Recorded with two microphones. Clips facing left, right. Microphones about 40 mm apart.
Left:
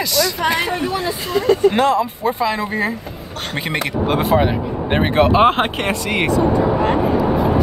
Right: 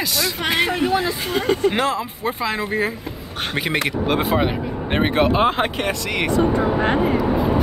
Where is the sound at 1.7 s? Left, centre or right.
Centre.